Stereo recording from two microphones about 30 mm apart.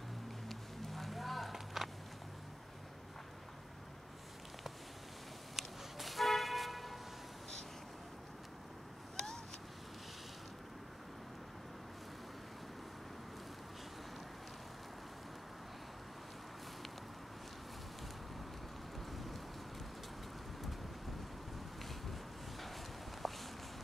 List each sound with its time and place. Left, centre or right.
0.5 s vehicle: centre
5.6 s church bell: centre
9.1 s vehicle: centre
19.1 s boat: centre
23.2 s a sound: centre